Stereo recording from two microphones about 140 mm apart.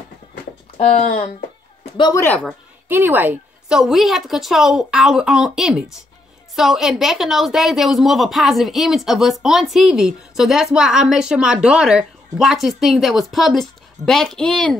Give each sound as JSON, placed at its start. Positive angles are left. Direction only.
{"t": 2.0, "sound": "speech", "side_deg": 30}
{"t": 2.9, "sound": "a woman's voice", "side_deg": -15}
{"t": 3.7, "sound": "a woman's voice", "side_deg": 0}